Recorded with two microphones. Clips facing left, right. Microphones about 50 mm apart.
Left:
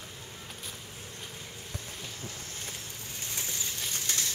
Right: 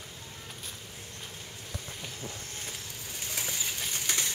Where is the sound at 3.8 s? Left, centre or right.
Centre.